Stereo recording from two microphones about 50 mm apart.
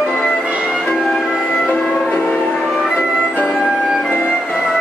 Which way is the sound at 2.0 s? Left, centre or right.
Left.